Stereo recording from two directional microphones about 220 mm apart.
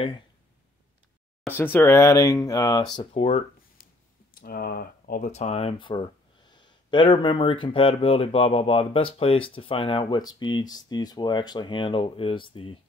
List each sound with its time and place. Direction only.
1.6 s speech: 10° left (ahead or behind); by 3.4 s 30° left (ahead or behind)
4.4 s speech: 45° left (ahead or behind); by 12.7 s 25° left (ahead or behind)